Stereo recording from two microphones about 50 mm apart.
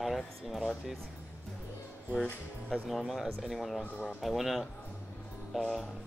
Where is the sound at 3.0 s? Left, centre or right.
Centre.